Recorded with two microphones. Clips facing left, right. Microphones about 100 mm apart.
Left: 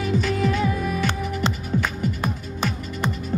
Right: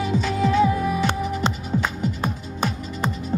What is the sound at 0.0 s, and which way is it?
Music, 25° right (ahead or behind).